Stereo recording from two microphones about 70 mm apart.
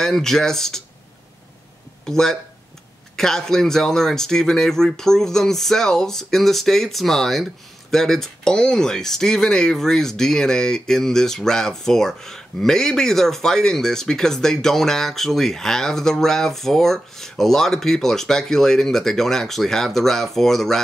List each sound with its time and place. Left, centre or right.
0.0 s speech: centre
2.0 s speech: centre